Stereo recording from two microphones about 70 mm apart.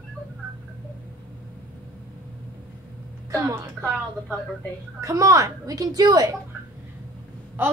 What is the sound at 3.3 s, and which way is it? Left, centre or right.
A woman's voice, right.